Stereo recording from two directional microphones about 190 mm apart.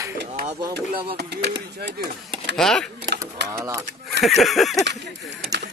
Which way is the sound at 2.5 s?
5° left (ahead or behind).